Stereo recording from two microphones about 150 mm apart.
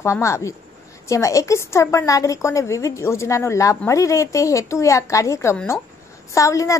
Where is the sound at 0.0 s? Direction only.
20° left (ahead or behind).